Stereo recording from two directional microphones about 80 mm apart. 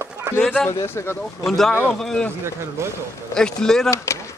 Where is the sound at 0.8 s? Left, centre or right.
Left.